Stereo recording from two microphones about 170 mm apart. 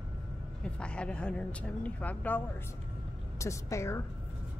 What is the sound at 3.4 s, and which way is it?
Speech, 15° left (ahead or behind).